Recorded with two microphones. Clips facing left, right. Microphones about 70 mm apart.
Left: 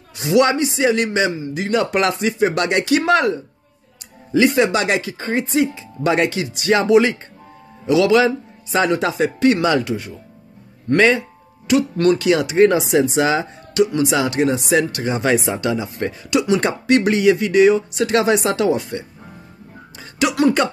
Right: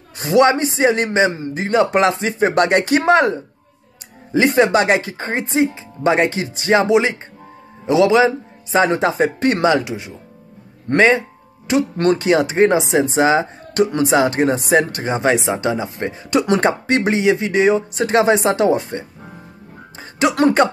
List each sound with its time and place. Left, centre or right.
0.2 s speech: right
9.7 s speech: centre
10.9 s speech: right